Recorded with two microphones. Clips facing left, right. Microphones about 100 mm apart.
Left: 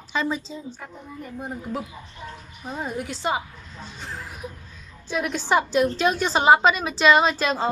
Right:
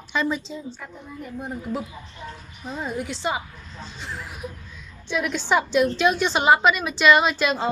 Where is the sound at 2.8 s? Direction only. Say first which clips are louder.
Right 1 dB; 50° left (ahead or behind).